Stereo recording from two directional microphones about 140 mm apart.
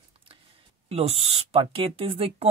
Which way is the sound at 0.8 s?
45° right (ahead or behind).